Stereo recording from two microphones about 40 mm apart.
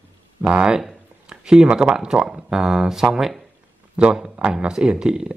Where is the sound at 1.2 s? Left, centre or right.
Centre.